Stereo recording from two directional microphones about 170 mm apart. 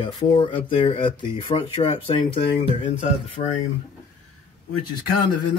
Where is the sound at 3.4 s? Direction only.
40° left (ahead or behind).